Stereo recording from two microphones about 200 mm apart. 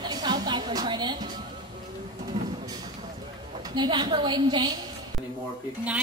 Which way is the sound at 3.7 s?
25° right (ahead or behind).